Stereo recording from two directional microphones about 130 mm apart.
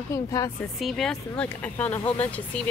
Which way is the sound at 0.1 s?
25° left (ahead or behind).